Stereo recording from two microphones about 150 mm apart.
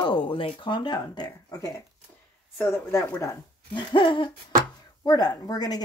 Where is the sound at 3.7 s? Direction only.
35° left (ahead or behind).